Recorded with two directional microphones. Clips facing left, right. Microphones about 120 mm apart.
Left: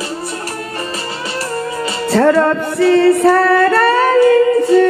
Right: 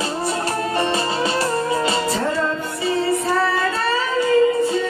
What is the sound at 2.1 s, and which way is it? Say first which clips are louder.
Music: left 10 dB; 65° left (ahead or behind).